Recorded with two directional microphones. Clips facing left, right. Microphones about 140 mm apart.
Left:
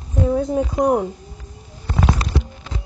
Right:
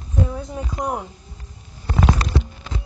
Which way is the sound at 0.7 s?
25° left (ahead or behind).